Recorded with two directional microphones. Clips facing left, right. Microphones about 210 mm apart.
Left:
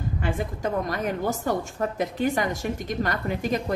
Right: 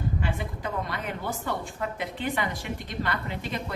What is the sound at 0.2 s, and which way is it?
A woman's voice, 45° left (ahead or behind).